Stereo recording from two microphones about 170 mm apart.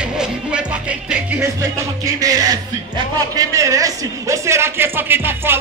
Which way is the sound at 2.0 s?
20° right (ahead or behind).